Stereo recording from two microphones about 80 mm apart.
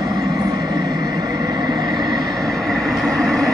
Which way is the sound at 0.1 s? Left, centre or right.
Right.